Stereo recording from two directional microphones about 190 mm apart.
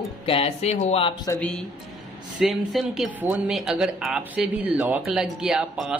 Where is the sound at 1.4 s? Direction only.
5° left (ahead or behind).